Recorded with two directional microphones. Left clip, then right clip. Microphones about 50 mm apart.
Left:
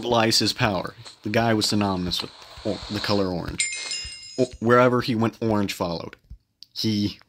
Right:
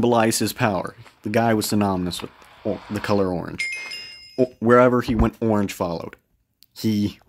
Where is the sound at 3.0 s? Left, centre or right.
Right.